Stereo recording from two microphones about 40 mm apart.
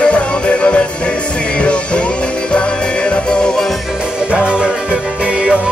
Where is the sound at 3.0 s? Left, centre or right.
Left.